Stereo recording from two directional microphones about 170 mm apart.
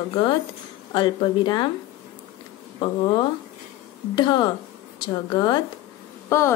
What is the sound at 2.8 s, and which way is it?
A woman's voice, 30° left (ahead or behind).